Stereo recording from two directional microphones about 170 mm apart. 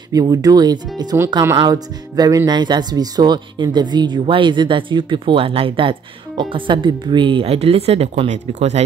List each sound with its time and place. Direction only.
0.1 s speech: 20° right (ahead or behind); by 8.8 s 40° right (ahead or behind)